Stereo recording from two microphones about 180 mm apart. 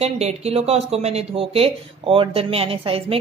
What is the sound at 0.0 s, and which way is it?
Speech, 35° right (ahead or behind).